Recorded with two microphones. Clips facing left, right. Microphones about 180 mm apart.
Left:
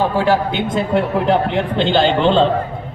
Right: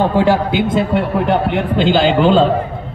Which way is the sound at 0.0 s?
20° right (ahead or behind).